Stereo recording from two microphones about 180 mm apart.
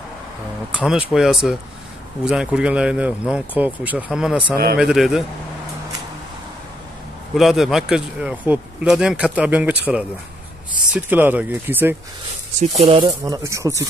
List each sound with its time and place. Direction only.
0.7 s speech: 5° right (ahead or behind)
7.3 s speech: centre (ahead or behind)
12.6 s speech: 35° right (ahead or behind); by 13.8 s 15° right (ahead or behind)